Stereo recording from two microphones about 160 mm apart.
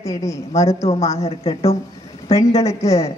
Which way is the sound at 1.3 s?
40° left (ahead or behind).